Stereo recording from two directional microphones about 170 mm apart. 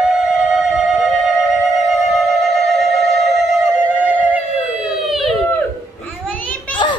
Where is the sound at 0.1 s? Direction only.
5° right (ahead or behind).